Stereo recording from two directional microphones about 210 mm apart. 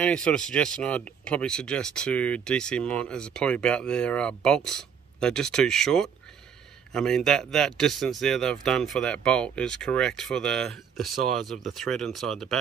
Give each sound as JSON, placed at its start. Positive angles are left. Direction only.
{"t": 0.0, "sound": "speech", "side_deg": 5}